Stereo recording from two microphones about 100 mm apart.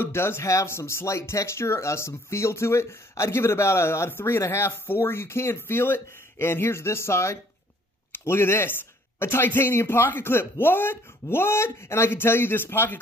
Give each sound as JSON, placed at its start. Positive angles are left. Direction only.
{"t": 0.0, "sound": "speech", "side_deg": 25}